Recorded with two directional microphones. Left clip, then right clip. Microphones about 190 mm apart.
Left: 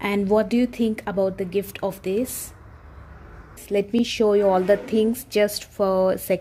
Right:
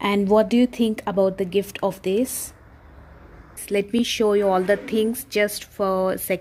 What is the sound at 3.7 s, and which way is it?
A woman's voice, centre (ahead or behind).